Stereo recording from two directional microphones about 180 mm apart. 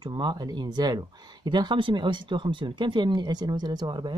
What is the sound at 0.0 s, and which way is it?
Speech, 25° right (ahead or behind).